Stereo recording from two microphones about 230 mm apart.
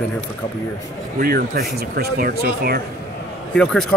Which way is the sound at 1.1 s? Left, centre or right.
Right.